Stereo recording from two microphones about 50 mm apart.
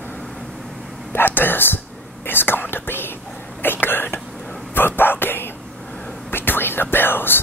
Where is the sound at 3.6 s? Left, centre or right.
Left.